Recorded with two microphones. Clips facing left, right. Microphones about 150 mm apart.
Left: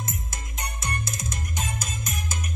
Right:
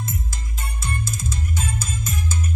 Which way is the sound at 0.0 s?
20° left (ahead or behind).